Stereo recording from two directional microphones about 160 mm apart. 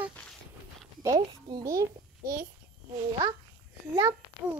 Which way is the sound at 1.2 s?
30° right (ahead or behind).